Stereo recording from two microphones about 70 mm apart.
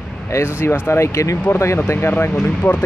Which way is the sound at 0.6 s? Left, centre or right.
Left.